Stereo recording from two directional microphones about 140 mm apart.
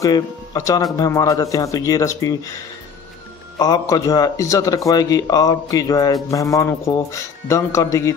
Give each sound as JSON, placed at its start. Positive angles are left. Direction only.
{"t": 0.0, "sound": "a man's voice", "side_deg": 25}
{"t": 3.5, "sound": "a man's voice", "side_deg": 25}